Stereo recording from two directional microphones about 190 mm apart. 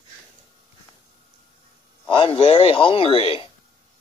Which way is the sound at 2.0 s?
25° left (ahead or behind).